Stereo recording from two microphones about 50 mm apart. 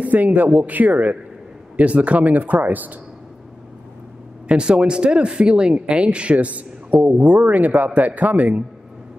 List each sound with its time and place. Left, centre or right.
0.0 s speech: right
4.5 s speech: right